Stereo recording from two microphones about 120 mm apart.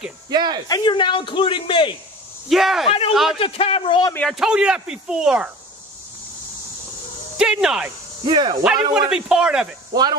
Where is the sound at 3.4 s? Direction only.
55° left (ahead or behind).